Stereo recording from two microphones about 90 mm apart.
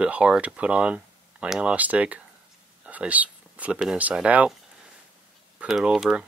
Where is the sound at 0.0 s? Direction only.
10° right (ahead or behind).